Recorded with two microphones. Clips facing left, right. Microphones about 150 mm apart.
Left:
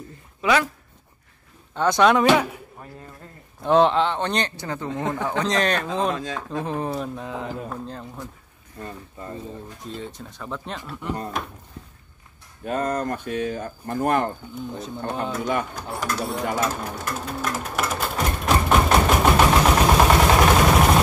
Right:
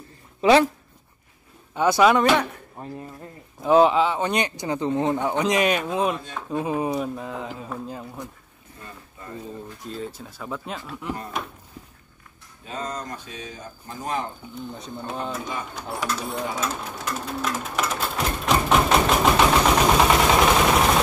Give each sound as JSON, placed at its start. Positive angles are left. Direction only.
{"t": 0.4, "sound": "speech", "side_deg": -30}
{"t": 1.8, "sound": "speech", "side_deg": -5}
{"t": 2.3, "sound": "speech", "side_deg": 5}
{"t": 3.6, "sound": "speech", "side_deg": -5}
{"t": 6.1, "sound": "speech", "side_deg": 90}
{"t": 6.5, "sound": "speech", "side_deg": -10}
{"t": 9.8, "sound": "speech", "side_deg": 0}
{"t": 12.6, "sound": "speech", "side_deg": 55}
{"t": 14.8, "sound": "speech", "side_deg": 0}
{"t": 16.5, "sound": "sewing machine", "side_deg": 0}